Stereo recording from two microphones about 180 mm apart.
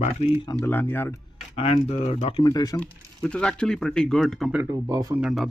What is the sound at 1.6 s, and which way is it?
Speech, 35° left (ahead or behind).